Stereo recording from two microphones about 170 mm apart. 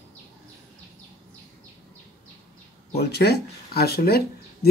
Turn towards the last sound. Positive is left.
turn(degrees=65)  # may be behind; listen again after turning